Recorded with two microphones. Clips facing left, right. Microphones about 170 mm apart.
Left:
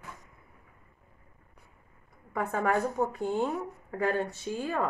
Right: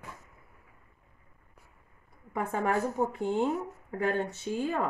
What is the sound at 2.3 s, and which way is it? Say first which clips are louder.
Speech: left 1 dB; 20° right (ahead or behind).